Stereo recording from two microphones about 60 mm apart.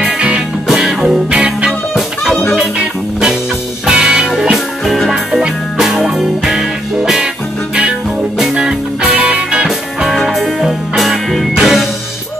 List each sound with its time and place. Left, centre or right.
0.0 s music: centre
0.7 s music: centre
1.7 s music: centre
3.8 s music: centre
8.4 s music: centre
9.1 s music: right
9.7 s music: centre